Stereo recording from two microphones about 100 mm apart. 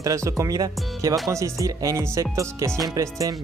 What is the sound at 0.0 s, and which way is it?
Speech, 35° right (ahead or behind).